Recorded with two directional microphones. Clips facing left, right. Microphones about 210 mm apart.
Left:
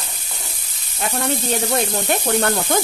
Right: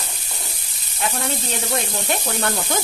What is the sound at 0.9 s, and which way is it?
Speech, 40° left (ahead or behind).